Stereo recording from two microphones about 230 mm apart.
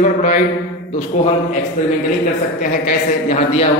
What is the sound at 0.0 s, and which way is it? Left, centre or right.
A man's voice, left.